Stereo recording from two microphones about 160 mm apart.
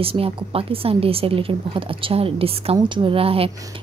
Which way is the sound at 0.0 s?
35° right (ahead or behind).